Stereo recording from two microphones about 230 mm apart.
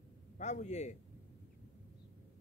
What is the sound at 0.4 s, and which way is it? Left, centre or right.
Speech, left.